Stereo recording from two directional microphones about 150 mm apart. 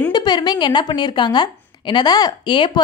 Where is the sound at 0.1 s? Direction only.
30° left (ahead or behind).